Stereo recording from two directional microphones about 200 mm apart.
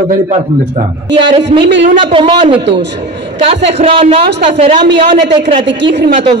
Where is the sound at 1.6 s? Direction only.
60° right (ahead or behind).